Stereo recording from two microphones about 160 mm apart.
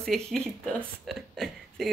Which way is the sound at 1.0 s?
Centre (ahead or behind).